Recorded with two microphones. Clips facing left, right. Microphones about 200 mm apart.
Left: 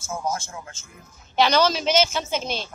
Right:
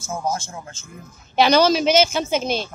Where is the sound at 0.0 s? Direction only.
30° right (ahead or behind).